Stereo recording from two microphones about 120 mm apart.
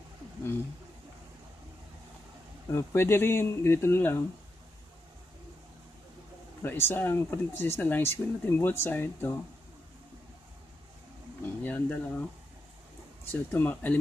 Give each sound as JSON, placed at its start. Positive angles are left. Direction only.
{"t": 2.7, "sound": "speech", "side_deg": 20}
{"t": 6.6, "sound": "speech", "side_deg": 15}
{"t": 11.6, "sound": "speech", "side_deg": 15}
{"t": 13.3, "sound": "speech", "side_deg": 15}